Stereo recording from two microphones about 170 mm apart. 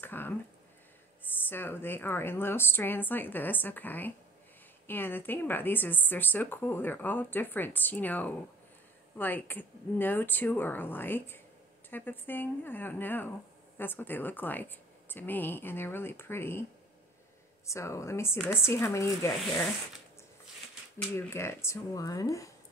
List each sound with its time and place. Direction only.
0.0 s speech: 10° left (ahead or behind)
17.6 s speech: 15° left (ahead or behind)
21.3 s speech: 15° left (ahead or behind)